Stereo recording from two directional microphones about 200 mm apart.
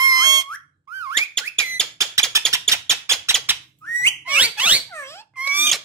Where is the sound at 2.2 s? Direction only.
15° right (ahead or behind).